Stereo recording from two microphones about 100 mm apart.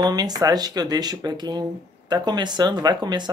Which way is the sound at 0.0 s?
40° right (ahead or behind).